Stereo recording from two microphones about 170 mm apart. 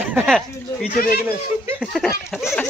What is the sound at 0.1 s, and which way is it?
Speech, 10° right (ahead or behind).